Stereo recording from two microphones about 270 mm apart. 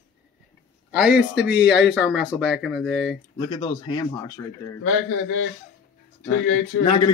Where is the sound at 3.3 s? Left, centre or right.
Centre.